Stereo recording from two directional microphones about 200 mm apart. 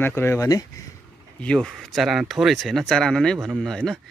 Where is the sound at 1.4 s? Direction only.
5° left (ahead or behind).